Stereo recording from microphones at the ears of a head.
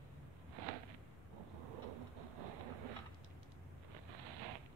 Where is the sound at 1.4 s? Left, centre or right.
Right.